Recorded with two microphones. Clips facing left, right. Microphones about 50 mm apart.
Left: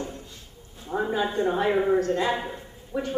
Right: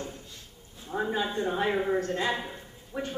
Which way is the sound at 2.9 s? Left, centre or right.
Centre.